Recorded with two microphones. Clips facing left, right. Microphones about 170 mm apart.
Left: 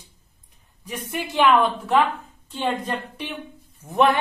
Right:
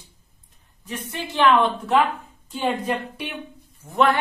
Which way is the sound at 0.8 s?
10° left (ahead or behind).